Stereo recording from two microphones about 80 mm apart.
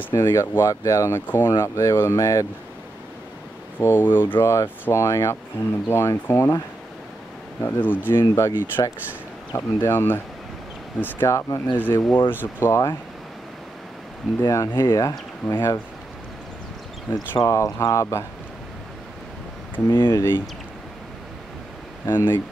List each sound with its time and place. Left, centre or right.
0.1 s speech: left
3.8 s speech: left
7.6 s speech: left
11.2 s speech: left
11.7 s speech: left
12.5 s speech: left
14.4 s speech: left
15.4 s speech: left
17.4 s speech: left
19.9 s speech: left
22.0 s speech: left